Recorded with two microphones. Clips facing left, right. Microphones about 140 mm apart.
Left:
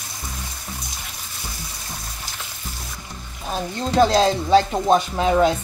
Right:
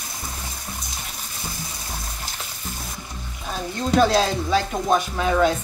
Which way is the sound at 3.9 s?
25° left (ahead or behind).